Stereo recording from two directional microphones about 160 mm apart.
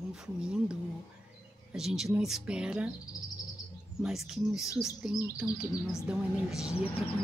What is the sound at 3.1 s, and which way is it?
Bird, 25° left (ahead or behind).